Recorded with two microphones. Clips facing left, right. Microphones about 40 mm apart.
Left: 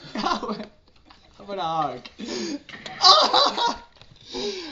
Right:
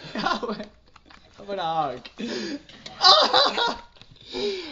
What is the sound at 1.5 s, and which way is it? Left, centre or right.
Speech, centre.